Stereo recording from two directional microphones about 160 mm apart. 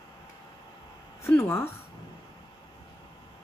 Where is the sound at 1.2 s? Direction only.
15° left (ahead or behind).